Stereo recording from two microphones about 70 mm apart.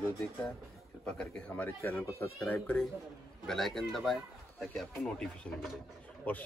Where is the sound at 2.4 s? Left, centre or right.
Left.